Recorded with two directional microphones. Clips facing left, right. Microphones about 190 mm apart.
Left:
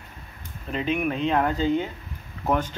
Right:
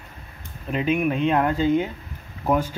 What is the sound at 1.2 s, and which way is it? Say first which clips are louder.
Speech: right 2 dB; 10° right (ahead or behind).